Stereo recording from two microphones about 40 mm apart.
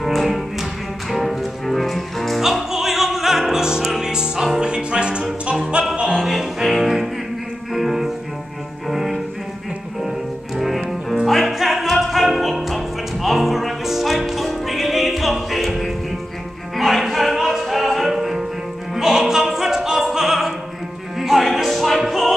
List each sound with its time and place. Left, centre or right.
0.0 s music: centre
2.4 s opera: centre
3.6 s music: centre
6.1 s music: centre
18.9 s opera: centre
21.2 s music: centre